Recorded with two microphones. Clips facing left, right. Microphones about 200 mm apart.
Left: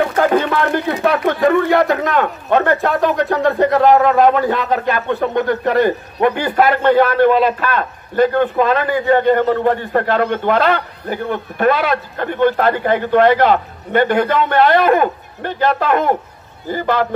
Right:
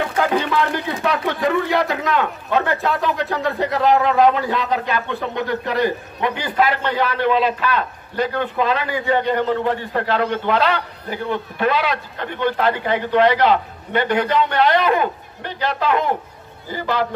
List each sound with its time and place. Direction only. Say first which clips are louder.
0.0 s a man's voice: left 5 dB; 50° left (ahead or behind)